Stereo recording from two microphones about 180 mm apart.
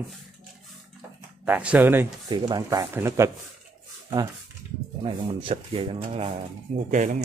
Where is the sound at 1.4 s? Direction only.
10° right (ahead or behind); by 6.3 s 30° right (ahead or behind).